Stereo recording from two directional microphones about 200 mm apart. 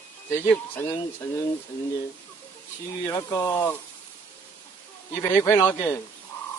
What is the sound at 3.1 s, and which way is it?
Speech, 20° left (ahead or behind).